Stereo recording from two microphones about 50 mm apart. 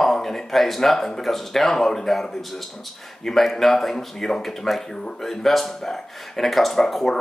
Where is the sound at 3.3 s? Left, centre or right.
Centre.